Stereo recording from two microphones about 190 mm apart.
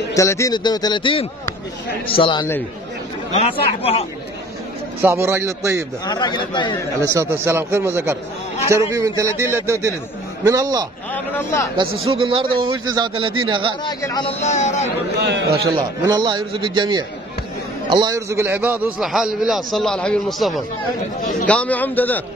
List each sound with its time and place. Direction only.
0.1 s a man's voice: 15° left (ahead or behind); by 4.0 s 30° left (ahead or behind)
5.0 s a man's voice: 15° right (ahead or behind)
6.0 s a man's voice: 20° left (ahead or behind)
7.0 s a man's voice: 15° right (ahead or behind)
11.1 s a man's voice: 15° left (ahead or behind)
12.0 s a man's voice: 30° right (ahead or behind)
13.8 s a man's voice: 20° left (ahead or behind)
14.4 s speech: 35° left (ahead or behind)
15.1 s a man's voice: 60° right (ahead or behind)
15.6 s a man's voice: 20° right (ahead or behind); by 22.2 s 10° left (ahead or behind)